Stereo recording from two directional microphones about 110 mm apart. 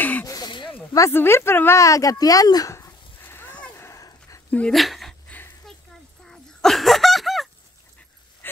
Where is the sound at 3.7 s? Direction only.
25° left (ahead or behind).